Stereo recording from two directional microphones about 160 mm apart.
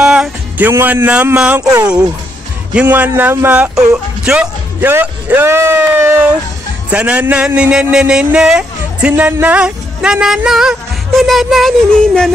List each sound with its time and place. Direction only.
0.0 s music: 5° right (ahead or behind)
0.7 s speech: 15° right (ahead or behind)
1.6 s speech: 20° right (ahead or behind)
2.7 s a man's voice: 10° right (ahead or behind)